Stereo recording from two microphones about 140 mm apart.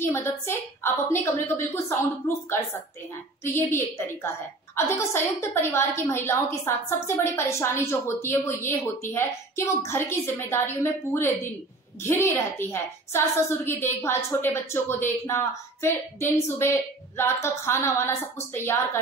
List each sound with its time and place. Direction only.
0.0 s a woman's voice: 20° left (ahead or behind)